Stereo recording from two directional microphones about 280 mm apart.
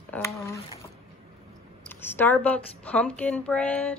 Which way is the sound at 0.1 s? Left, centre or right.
Centre.